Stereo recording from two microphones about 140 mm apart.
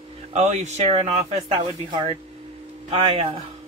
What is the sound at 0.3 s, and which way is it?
Speech, 55° right (ahead or behind).